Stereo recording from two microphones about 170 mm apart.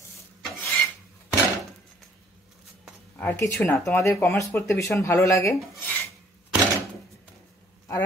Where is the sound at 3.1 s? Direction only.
10° left (ahead or behind).